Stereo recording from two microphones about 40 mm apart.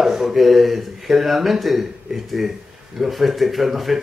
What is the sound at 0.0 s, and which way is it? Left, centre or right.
Speech, centre.